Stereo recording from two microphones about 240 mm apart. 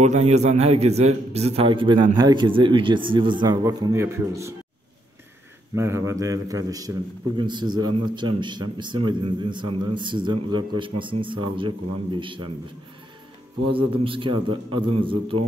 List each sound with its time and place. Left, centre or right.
0.0 s a man's voice: right; by 4.6 s centre
5.8 s a man's voice: centre
13.7 s a man's voice: right